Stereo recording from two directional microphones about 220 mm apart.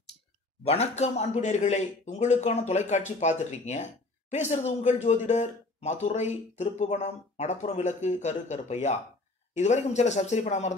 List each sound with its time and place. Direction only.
0.7 s speech: 30° left (ahead or behind)